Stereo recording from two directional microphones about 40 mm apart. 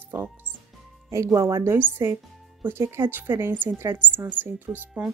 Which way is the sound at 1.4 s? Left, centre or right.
Right.